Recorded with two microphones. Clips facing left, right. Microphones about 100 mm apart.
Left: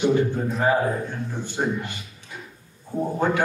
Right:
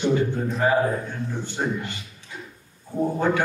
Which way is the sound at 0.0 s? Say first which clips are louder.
Left 1 dB; 15° left (ahead or behind).